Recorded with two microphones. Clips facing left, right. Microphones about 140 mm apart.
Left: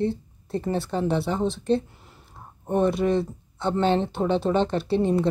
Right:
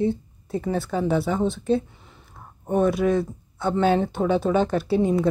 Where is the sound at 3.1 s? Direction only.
25° left (ahead or behind).